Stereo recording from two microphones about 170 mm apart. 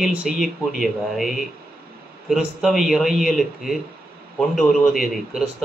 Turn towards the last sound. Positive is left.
turn(degrees=0)  # may be behind; listen again after turning